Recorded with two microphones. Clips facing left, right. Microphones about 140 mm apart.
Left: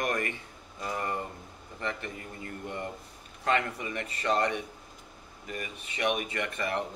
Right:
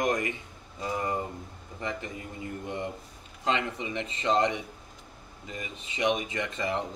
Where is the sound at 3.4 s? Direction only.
20° right (ahead or behind).